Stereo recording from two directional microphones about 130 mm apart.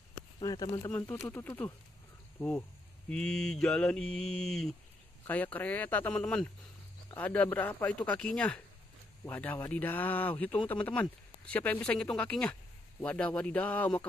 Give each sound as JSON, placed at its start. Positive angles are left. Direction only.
{"t": 0.4, "sound": "speech", "side_deg": 30}
{"t": 3.1, "sound": "mantra", "side_deg": 5}
{"t": 5.2, "sound": "speech", "side_deg": 10}